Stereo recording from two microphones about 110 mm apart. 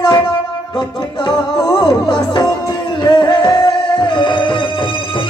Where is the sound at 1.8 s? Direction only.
45° left (ahead or behind).